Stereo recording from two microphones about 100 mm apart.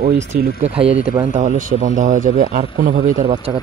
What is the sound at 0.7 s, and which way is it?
Speech, 80° right.